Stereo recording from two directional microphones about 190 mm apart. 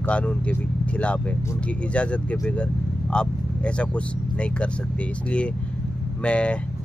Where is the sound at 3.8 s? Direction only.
5° left (ahead or behind).